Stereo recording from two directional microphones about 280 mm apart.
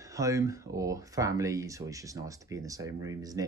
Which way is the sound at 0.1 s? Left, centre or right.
Centre.